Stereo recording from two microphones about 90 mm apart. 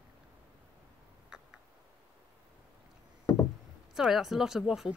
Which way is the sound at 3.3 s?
50° left (ahead or behind).